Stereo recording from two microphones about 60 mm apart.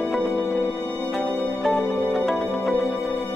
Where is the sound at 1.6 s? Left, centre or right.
Centre.